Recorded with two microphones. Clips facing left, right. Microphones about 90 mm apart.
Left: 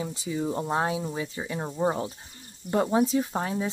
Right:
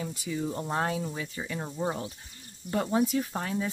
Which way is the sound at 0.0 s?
25° left (ahead or behind).